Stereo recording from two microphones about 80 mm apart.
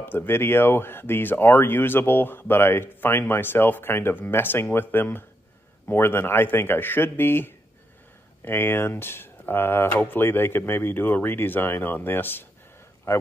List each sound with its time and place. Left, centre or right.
0.0 s speech: left
13.1 s a man's voice: left